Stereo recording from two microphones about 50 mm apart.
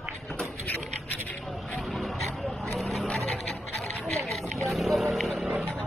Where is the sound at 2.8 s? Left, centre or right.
Centre.